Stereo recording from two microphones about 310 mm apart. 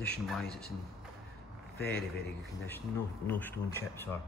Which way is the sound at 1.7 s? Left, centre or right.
Left.